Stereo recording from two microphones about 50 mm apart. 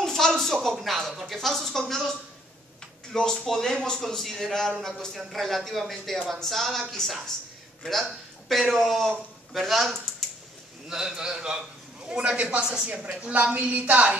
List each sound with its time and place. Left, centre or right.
0.0 s a sound: centre
0.7 s speech: centre
3.1 s speech: centre
4.7 s speech: centre
10.9 s a man's voice: centre; by 14.1 s right